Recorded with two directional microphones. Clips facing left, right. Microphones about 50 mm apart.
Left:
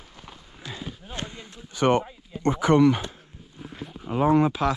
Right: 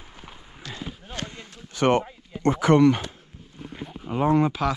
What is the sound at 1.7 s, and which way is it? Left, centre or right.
Speech, right.